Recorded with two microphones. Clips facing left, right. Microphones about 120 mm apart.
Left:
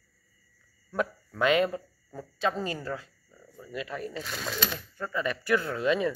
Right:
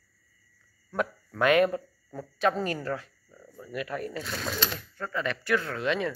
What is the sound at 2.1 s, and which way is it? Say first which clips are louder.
Speech: right 3 dB; centre (ahead or behind).